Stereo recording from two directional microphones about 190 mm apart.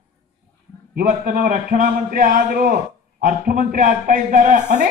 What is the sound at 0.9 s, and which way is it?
A man's voice, 45° right (ahead or behind).